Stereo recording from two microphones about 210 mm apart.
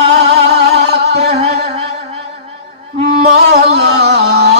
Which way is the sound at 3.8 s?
50° right (ahead or behind).